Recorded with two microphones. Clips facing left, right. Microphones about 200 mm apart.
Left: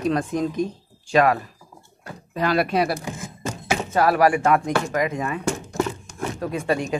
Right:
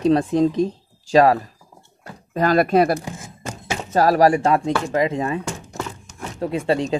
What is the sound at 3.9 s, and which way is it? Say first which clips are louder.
Speech: right 3 dB; 35° right (ahead or behind).